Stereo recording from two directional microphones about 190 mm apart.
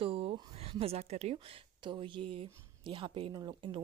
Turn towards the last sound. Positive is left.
turn(degrees=-25)  # may be behind; listen again after turning